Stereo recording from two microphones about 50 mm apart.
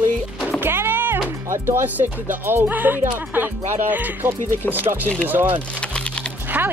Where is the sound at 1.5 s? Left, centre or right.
Right.